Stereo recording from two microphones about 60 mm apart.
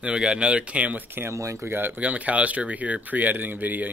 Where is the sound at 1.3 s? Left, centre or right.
Right.